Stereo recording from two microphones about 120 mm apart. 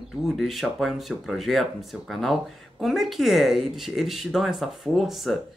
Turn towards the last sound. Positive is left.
turn(degrees=0)  # may be behind; listen again after turning